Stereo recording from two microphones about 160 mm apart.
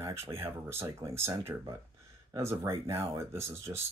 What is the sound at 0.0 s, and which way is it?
Speech, 15° right (ahead or behind).